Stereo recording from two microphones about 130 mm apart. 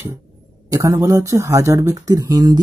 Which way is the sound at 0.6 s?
30° right (ahead or behind).